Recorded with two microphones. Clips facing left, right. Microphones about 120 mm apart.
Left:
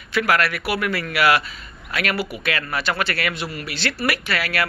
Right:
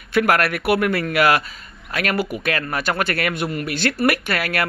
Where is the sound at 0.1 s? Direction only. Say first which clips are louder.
Right 3 dB; 50° right (ahead or behind).